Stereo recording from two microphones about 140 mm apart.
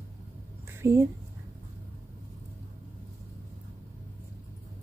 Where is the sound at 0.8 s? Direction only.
20° right (ahead or behind).